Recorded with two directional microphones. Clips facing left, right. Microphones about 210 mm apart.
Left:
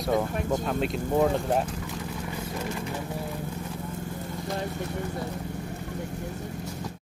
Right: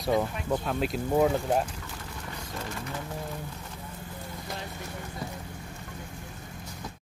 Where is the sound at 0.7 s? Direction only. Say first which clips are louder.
Left 1 dB; centre (ahead or behind).